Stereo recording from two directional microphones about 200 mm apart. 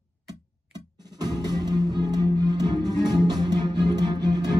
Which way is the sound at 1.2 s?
20° right (ahead or behind).